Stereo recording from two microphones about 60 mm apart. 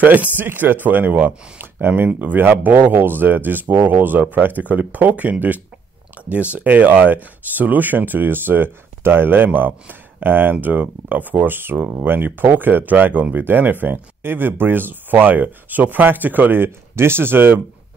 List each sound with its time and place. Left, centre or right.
0.0 s speech: right